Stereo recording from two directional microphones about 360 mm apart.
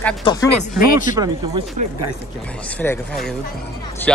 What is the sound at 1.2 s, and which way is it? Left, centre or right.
Speech, centre.